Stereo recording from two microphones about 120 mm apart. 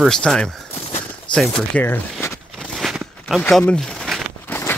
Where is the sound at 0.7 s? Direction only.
20° left (ahead or behind).